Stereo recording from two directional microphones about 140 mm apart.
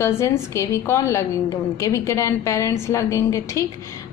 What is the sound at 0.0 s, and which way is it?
A woman's voice, 20° left (ahead or behind).